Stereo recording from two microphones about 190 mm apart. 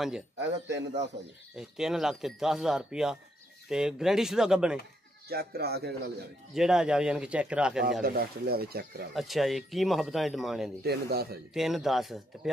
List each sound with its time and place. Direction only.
0.4 s a man's voice: 65° right (ahead or behind)
1.6 s speech: 5° right (ahead or behind)
5.3 s a man's voice: 55° right (ahead or behind)
6.5 s speech: 5° right (ahead or behind)
8.0 s speech: 55° right (ahead or behind)
9.1 s speech: centre (ahead or behind)
10.8 s a man's voice: 55° right (ahead or behind)
11.5 s speech: centre (ahead or behind)